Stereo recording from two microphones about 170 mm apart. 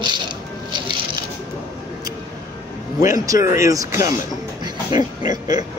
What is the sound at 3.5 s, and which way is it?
Speech, 20° right (ahead or behind).